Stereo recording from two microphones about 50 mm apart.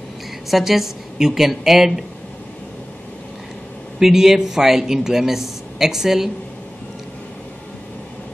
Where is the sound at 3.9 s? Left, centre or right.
Centre.